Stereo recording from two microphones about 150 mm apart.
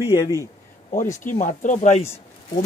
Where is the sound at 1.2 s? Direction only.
60° left (ahead or behind).